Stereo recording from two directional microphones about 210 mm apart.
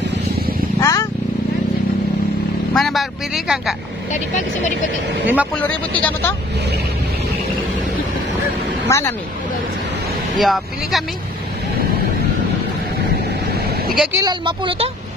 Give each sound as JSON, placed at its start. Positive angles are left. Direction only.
{"t": 0.7, "sound": "vehicle", "side_deg": 15}
{"t": 2.7, "sound": "a man's voice", "side_deg": 0}
{"t": 4.1, "sound": "speech", "side_deg": 35}
{"t": 5.2, "sound": "speech", "side_deg": -5}
{"t": 5.6, "sound": "speech", "side_deg": 5}
{"t": 8.8, "sound": "speech", "side_deg": 15}
{"t": 10.4, "sound": "a man's voice", "side_deg": 0}
{"t": 13.3, "sound": "vehicle", "side_deg": -50}
{"t": 14.1, "sound": "speech", "side_deg": -20}